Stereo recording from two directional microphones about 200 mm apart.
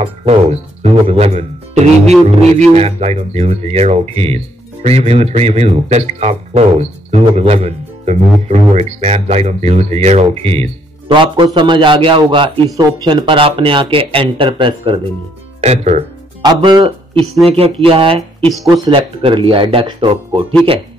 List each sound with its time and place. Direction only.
0.0 s speech: 30° right (ahead or behind)
16.4 s speech: 20° right (ahead or behind)
18.4 s speech: centre (ahead or behind)
18.7 s speech: 25° right (ahead or behind)